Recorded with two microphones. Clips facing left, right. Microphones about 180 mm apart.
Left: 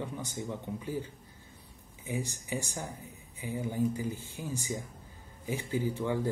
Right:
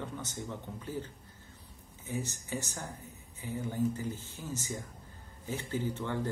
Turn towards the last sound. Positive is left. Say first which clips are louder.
# left 3 dB
turn(degrees=10)  # may be behind; listen again after turning